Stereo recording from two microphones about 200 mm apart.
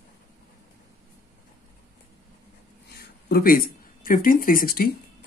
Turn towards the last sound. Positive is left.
turn(degrees=45)  # may be behind; listen again after turning